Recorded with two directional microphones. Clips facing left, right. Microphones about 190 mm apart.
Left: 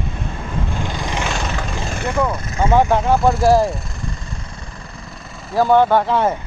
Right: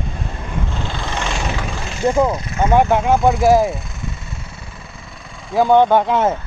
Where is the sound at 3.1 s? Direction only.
Centre (ahead or behind).